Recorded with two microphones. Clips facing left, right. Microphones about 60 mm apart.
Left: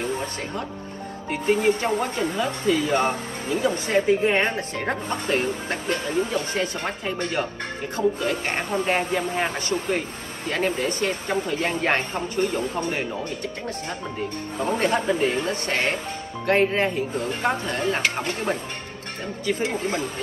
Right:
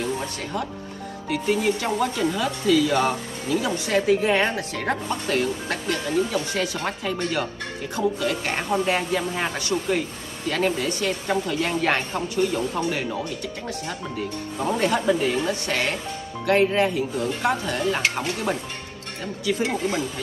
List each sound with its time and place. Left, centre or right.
1.3 s speech: left
7.9 s speech: left
10.8 s speech: left
14.8 s speech: left